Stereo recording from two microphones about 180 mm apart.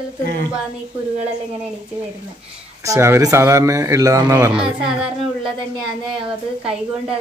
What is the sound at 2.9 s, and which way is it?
A man's voice, 15° right (ahead or behind).